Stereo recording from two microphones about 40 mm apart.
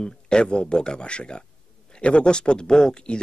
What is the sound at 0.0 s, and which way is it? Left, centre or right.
Speech, left.